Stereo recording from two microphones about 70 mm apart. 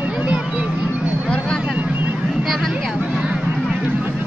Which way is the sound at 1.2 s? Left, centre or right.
Centre.